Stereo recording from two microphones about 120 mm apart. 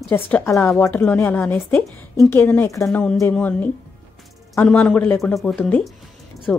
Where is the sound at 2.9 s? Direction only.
5° left (ahead or behind).